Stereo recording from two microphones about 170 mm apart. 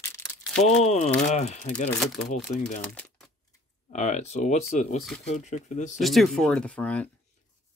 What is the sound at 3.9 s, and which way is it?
Speech, 45° left (ahead or behind).